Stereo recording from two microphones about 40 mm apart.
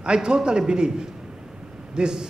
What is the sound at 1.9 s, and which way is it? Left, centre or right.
Speech, centre.